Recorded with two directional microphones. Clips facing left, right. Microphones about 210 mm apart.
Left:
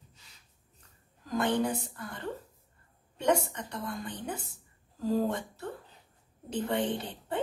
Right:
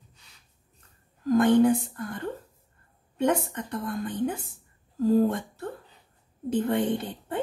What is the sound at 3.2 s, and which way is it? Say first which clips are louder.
A woman's voice: right 3 dB; 50° right (ahead or behind).